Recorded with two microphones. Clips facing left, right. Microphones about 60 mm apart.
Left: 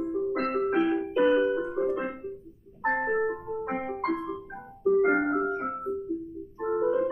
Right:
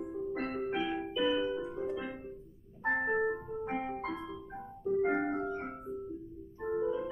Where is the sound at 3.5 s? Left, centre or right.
Left.